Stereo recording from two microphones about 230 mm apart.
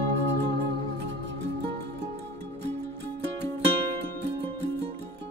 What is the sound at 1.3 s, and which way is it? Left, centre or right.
Music, right.